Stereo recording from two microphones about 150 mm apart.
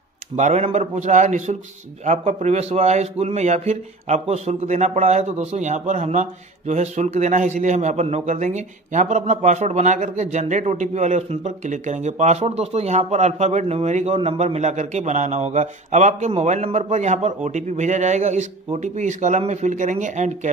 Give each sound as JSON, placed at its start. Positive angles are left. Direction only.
{"t": 0.4, "sound": "a man's voice", "side_deg": -45}